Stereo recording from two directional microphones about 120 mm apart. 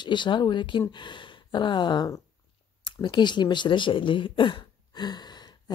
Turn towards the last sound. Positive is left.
turn(degrees=35)  # may be behind; listen again after turning